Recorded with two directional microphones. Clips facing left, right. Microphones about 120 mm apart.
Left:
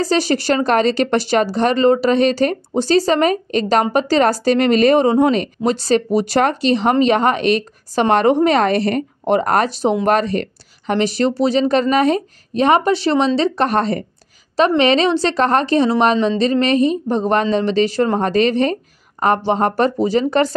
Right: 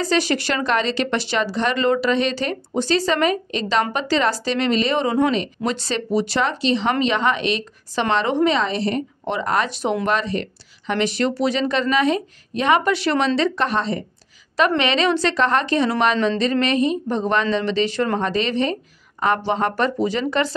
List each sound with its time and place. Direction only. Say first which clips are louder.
0.0 s speech: left 3 dB; 35° left (ahead or behind)
8.5 s speech: left 5 dB; 60° left (ahead or behind)
9.7 s speech: left 5 dB; 35° left (ahead or behind)
10.0 s speech: left 6 dB; 45° left (ahead or behind); by 13.3 s 30° left (ahead or behind)
13.7 s speech: left 5 dB; 50° left (ahead or behind)
14.8 s speech: left 5 dB; 35° left (ahead or behind)